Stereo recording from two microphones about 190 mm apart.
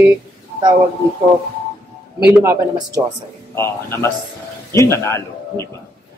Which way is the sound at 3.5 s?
15° left (ahead or behind).